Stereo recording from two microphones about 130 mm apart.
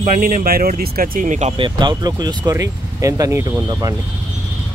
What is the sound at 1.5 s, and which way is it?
Speech, 40° right (ahead or behind).